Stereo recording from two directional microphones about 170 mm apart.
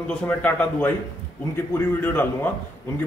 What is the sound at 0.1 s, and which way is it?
A man's voice, 10° left (ahead or behind).